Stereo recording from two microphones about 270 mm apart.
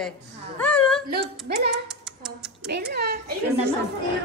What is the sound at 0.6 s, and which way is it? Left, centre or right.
Whimper, centre.